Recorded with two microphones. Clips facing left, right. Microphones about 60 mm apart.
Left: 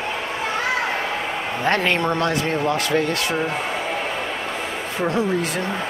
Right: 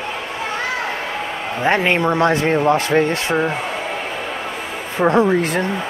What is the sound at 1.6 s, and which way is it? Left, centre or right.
A man's voice, centre.